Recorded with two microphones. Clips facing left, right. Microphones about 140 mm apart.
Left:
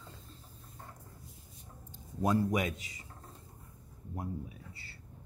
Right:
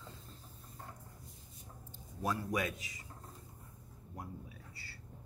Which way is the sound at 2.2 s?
20° left (ahead or behind).